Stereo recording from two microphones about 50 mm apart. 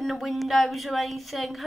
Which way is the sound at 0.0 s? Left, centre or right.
Centre.